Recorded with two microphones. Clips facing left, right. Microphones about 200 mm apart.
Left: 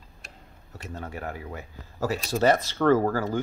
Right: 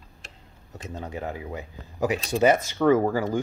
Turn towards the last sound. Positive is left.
turn(degrees=-15)  # may be behind; listen again after turning